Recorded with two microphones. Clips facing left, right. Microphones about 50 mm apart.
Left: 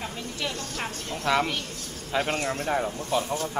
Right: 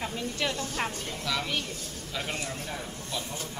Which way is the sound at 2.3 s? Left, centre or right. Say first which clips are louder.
Left 9 dB; left.